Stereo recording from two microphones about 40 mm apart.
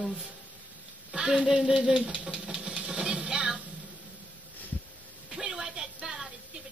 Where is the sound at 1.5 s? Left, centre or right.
Right.